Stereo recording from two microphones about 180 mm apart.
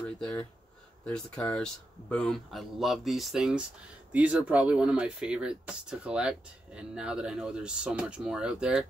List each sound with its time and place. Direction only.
0.0 s speech: 5° left (ahead or behind)